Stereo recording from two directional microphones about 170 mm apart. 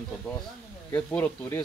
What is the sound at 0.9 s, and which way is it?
Speech, 10° left (ahead or behind).